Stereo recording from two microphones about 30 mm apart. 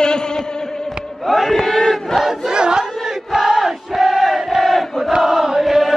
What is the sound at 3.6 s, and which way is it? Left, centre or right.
Crowd, centre.